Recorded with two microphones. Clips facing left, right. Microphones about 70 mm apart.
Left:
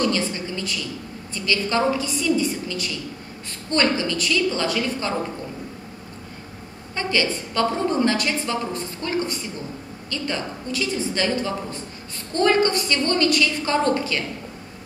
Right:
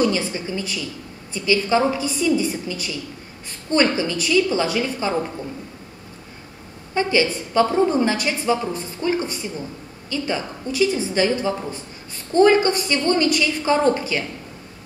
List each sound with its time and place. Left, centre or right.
0.0 s a woman's voice: centre
7.0 s a woman's voice: centre